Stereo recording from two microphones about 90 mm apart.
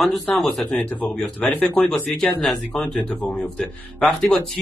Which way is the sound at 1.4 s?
15° left (ahead or behind).